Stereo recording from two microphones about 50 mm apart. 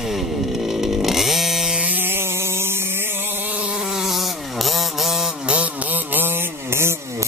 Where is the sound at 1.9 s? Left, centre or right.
Right.